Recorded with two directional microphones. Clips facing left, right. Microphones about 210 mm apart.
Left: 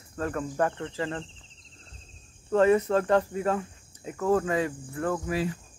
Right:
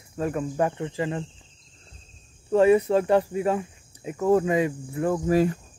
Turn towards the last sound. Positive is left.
turn(degrees=-45)  # may be behind; listen again after turning